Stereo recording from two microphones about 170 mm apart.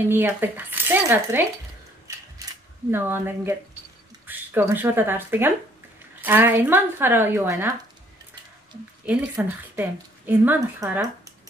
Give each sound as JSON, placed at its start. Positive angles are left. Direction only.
{"t": 0.1, "sound": "speech", "side_deg": -10}
{"t": 2.9, "sound": "speech", "side_deg": -15}
{"t": 9.3, "sound": "a woman's voice", "side_deg": -10}